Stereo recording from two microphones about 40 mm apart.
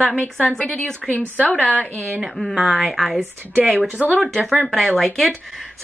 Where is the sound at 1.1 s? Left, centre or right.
Left.